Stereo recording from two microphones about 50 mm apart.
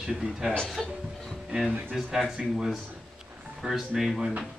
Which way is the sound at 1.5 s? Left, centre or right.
Right.